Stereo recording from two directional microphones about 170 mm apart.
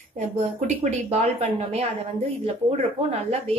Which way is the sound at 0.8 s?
40° right (ahead or behind).